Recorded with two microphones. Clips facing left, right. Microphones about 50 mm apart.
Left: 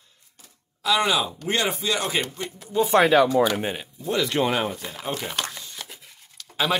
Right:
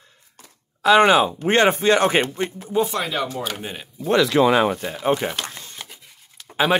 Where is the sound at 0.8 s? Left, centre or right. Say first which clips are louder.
Right 8 dB; right.